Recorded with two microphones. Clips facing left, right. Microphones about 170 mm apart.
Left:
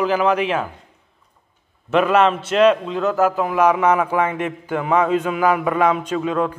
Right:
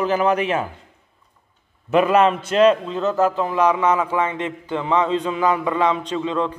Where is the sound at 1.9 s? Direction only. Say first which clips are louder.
Even; 5° right (ahead or behind).